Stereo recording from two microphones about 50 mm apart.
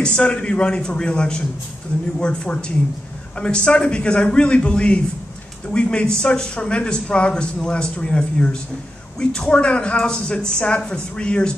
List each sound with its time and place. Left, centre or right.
0.0 s a man's voice: centre